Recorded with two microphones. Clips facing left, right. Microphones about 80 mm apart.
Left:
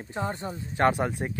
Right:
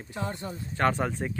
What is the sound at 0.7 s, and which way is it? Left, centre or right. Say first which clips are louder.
Speech: left 2 dB; centre.